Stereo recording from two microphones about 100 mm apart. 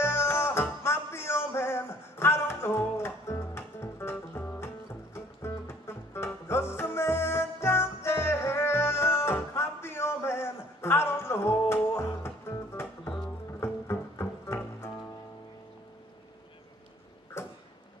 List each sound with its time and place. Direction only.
0.0 s music: 25° left (ahead or behind)